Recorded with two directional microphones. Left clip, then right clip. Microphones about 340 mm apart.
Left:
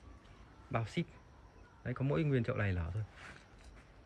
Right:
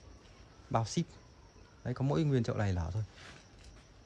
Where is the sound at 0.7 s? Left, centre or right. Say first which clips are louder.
Right 5 dB; centre.